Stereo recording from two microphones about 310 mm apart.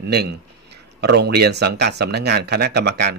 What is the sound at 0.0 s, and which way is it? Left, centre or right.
Speech, right.